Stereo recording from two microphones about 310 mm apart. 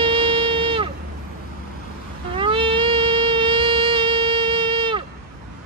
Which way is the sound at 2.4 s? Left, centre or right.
Centre.